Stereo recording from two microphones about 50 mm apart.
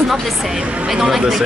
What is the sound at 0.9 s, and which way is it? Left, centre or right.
Speech, centre.